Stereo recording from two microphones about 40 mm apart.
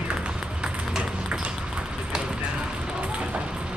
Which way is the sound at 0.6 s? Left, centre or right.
Right.